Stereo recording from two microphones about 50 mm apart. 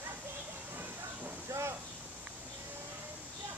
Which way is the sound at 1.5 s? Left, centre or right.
Right.